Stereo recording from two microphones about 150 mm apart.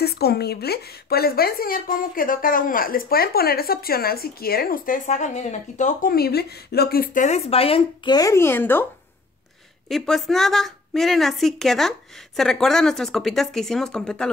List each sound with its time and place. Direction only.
0.0 s speech: 90° left; by 6.1 s 55° left (ahead or behind)
6.1 s speech: 90° left
7.2 s speech: 45° left (ahead or behind); by 8.8 s 15° left (ahead or behind)
9.8 s speech: centre (ahead or behind)